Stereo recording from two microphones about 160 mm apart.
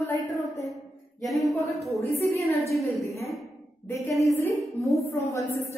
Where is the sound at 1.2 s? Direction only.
Centre (ahead or behind).